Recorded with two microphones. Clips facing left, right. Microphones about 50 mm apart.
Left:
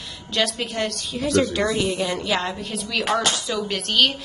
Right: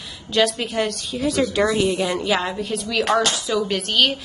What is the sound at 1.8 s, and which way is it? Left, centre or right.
Speech, right.